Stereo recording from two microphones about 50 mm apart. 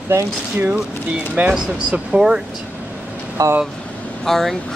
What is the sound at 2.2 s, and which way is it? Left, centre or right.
Speech, centre.